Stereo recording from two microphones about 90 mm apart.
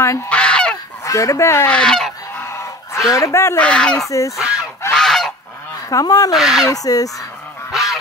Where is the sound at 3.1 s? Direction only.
35° left (ahead or behind).